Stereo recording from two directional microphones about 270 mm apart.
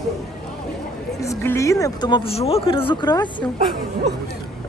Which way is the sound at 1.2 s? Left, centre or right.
Centre.